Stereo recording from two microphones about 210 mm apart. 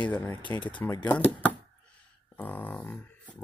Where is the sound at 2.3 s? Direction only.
10° left (ahead or behind).